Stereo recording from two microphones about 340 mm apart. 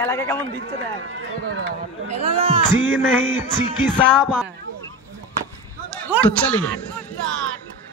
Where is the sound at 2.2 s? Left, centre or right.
Centre.